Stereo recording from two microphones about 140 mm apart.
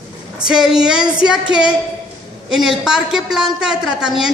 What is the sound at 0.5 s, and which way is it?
A woman's voice, 5° right (ahead or behind).